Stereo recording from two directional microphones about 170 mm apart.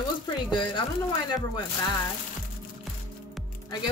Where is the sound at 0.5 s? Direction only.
30° left (ahead or behind).